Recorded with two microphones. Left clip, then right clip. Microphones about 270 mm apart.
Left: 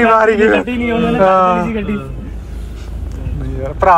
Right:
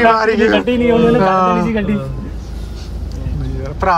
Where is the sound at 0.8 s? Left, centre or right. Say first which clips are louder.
Right 4 dB; right.